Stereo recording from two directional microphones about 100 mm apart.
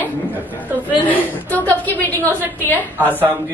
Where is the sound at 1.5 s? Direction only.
15° left (ahead or behind).